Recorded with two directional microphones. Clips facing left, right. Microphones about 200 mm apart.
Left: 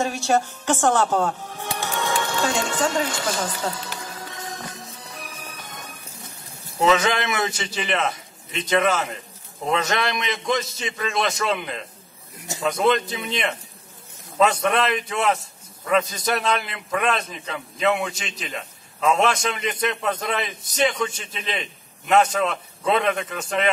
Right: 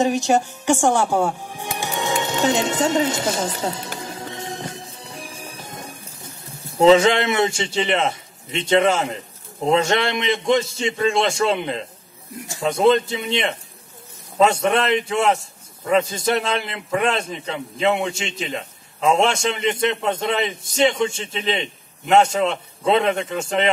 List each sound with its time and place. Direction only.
0.0 s speech: 15° right (ahead or behind)
4.0 s music: 25° right (ahead or behind)
6.8 s a man's voice: 30° right (ahead or behind)